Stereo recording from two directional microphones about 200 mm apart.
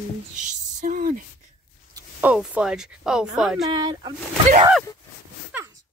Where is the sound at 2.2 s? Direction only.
5° right (ahead or behind).